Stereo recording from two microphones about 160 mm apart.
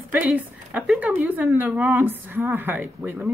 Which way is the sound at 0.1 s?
10° right (ahead or behind).